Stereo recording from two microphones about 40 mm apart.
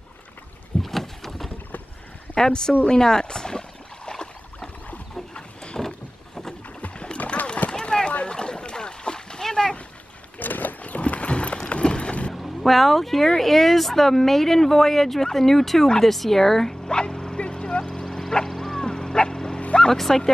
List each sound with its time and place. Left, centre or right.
0.8 s boat: centre
2.3 s speech: centre
2.9 s boat: centre
5.3 s a sound: left
6.8 s boat: left
7.7 s a sound: centre
8.3 s splash: left
10.4 s clip-clop: left
12.4 s a sound: centre
13.3 s speech: centre
16.9 s bow-wow: left
19.6 s vehicle: left
19.9 s speech: centre